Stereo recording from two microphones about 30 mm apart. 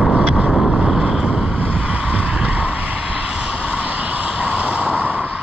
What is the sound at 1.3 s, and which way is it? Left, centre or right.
Vehicle, right.